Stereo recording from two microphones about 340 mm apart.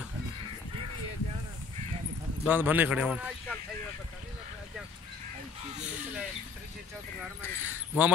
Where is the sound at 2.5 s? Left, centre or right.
Centre.